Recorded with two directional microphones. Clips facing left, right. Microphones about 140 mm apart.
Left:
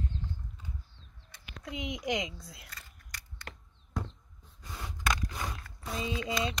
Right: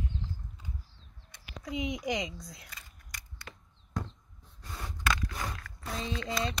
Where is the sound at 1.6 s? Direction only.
Centre (ahead or behind).